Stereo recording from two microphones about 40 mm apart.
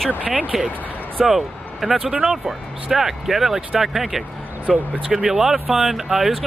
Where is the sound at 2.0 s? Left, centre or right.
Right.